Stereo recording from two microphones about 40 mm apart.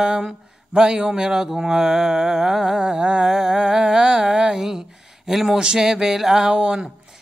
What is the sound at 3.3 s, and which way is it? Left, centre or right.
Humming, centre.